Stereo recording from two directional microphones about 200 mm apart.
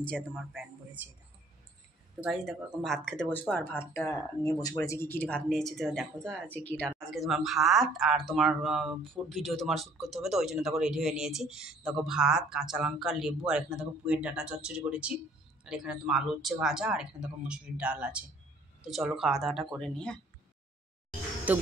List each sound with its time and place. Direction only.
0.0 s speech: 5° left (ahead or behind)
1.0 s speech: 10° right (ahead or behind); by 4.2 s 10° left (ahead or behind)
4.5 s speech: 20° left (ahead or behind)
21.5 s speech: 10° right (ahead or behind)